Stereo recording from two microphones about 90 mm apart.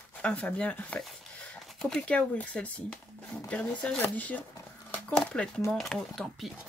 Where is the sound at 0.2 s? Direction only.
15° left (ahead or behind).